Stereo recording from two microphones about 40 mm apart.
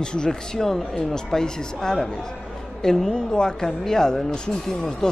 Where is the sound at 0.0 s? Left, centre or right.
Centre.